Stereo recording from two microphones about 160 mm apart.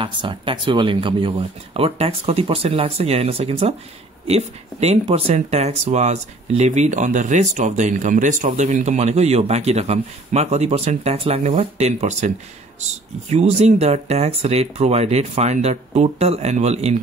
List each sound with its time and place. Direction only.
0.0 s speech: 30° right (ahead or behind)
13.3 s speech: 45° right (ahead or behind)